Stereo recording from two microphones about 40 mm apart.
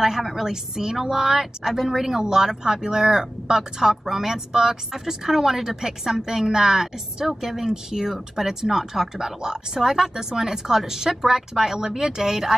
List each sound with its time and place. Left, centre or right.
0.0 s speech: centre